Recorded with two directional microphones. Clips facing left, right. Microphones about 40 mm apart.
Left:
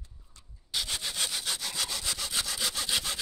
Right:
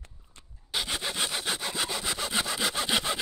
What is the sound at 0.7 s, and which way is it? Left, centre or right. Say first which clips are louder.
Sawing: right 3 dB; right.